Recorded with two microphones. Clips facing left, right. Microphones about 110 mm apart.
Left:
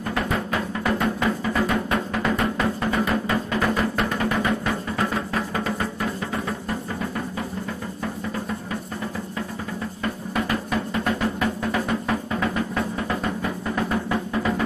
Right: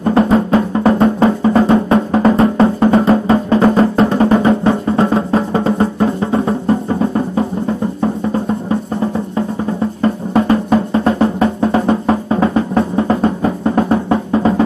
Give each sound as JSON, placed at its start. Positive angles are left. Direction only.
{"t": 0.0, "sound": "music", "side_deg": -30}